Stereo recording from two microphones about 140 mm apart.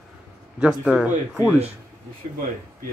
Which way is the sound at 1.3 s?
20° left (ahead or behind).